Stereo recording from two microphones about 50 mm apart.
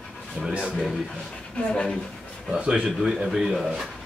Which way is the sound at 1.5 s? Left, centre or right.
Centre.